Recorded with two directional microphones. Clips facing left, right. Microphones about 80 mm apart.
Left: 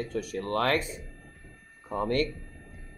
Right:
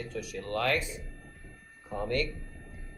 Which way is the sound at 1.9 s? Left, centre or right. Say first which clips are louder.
Left 4 dB; left.